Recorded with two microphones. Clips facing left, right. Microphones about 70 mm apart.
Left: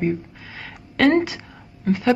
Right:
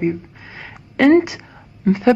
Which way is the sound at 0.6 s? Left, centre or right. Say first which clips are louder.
Right 3 dB; centre.